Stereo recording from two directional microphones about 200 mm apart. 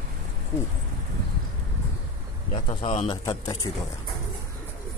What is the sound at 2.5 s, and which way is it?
Speech, 30° left (ahead or behind).